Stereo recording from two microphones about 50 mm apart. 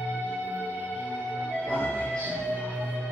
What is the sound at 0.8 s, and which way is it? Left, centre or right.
Music, left.